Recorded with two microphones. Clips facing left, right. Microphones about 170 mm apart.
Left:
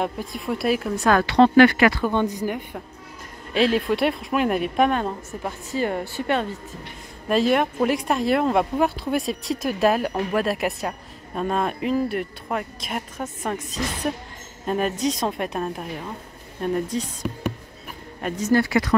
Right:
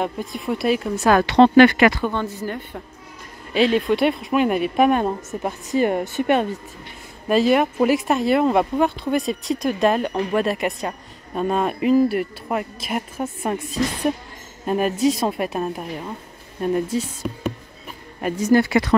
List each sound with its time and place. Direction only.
0.0 s speech: centre (ahead or behind)
1.0 s speech: 20° right (ahead or behind)
2.0 s a woman's voice: 15° left (ahead or behind)
3.5 s speech: centre (ahead or behind)
4.9 s a woman's voice: 20° right (ahead or behind)
7.2 s a woman's voice: centre (ahead or behind); by 18.9 s 25° right (ahead or behind)